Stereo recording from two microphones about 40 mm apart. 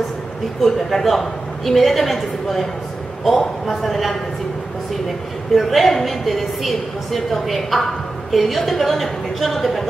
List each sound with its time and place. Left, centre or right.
0.6 s a woman's voice: centre
5.5 s a woman's voice: centre